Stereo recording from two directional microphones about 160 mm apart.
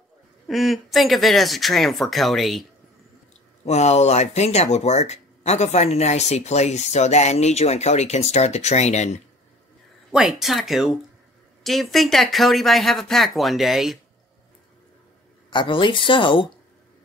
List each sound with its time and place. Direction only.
0.5 s speech: centre (ahead or behind)
3.6 s speech: 45° left (ahead or behind)
10.1 s speech: centre (ahead or behind)
15.5 s speech: 30° left (ahead or behind)